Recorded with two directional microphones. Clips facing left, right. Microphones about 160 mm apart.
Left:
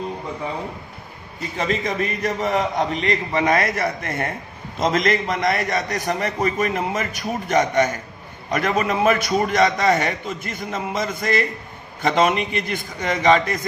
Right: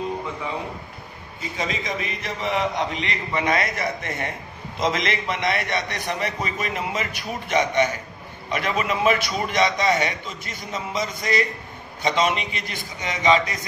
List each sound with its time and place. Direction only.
1.7 s a man's voice: 50° left (ahead or behind)